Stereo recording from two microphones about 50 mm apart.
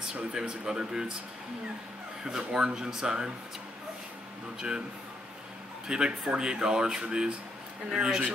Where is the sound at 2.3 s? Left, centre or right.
Centre.